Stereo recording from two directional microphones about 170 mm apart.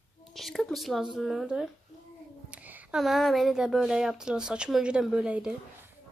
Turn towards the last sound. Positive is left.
turn(degrees=-5)  # may be behind; listen again after turning